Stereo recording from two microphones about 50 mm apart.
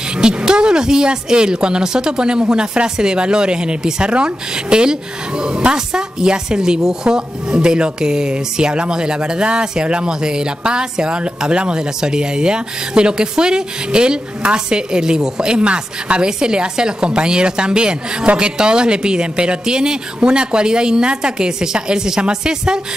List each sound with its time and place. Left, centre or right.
0.2 s a woman's voice: centre